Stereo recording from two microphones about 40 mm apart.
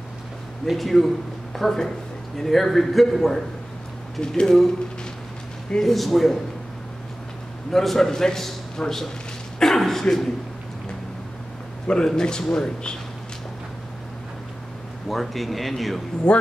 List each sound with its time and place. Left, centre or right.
0.7 s speech: centre
4.4 s a man's voice: centre
5.8 s speech: centre
7.7 s a man's voice: centre
9.6 s a sound: centre
11.9 s a man's voice: left
15.0 s speech: centre
16.3 s a man's voice: left